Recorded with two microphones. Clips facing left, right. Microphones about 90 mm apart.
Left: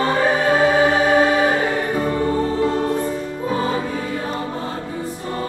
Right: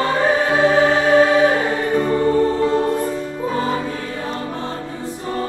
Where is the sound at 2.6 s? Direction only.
Centre (ahead or behind).